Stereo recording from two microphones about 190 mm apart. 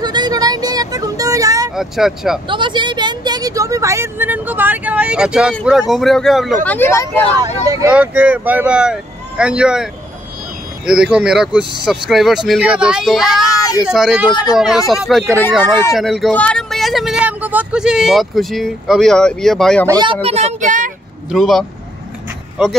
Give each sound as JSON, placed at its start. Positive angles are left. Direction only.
{"t": 0.0, "sound": "a sound", "side_deg": -20}
{"t": 1.8, "sound": "speech", "side_deg": 0}
{"t": 2.4, "sound": "a woman's voice", "side_deg": -25}
{"t": 7.4, "sound": "speech", "side_deg": -20}
{"t": 7.9, "sound": "speech", "side_deg": -5}
{"t": 10.9, "sound": "speech", "side_deg": -5}
{"t": 19.9, "sound": "speech", "side_deg": -25}
{"t": 21.3, "sound": "speech", "side_deg": 0}